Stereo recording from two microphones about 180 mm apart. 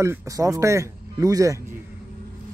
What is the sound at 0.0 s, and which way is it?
A man's voice, 15° right (ahead or behind).